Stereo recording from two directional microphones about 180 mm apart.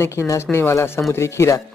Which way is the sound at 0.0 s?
15° left (ahead or behind).